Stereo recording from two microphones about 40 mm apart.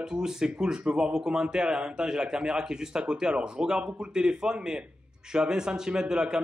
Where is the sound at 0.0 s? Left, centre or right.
Centre.